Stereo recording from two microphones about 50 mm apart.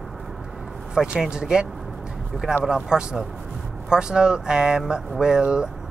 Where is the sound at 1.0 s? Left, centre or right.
Centre.